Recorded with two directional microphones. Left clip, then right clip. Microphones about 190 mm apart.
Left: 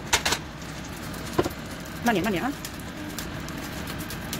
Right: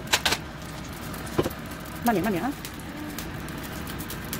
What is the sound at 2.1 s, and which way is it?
Speech, 5° right (ahead or behind).